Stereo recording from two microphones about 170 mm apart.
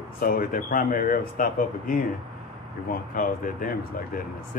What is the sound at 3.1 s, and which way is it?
Speech, 55° left (ahead or behind).